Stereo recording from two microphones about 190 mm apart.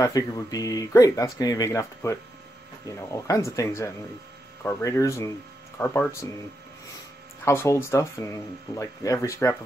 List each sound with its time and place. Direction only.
0.0 s speech: 20° left (ahead or behind)
7.4 s speech: 15° left (ahead or behind)